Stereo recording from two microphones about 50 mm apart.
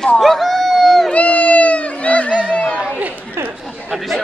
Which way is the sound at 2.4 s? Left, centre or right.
Centre.